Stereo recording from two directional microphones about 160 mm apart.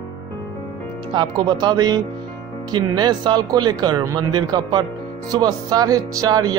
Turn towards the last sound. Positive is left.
turn(degrees=-25)  # may be behind; listen again after turning